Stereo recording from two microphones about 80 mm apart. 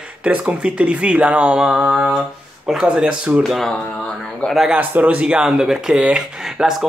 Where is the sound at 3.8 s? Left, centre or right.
Centre.